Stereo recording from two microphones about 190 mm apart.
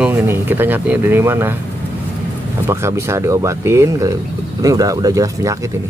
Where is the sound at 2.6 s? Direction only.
15° right (ahead or behind).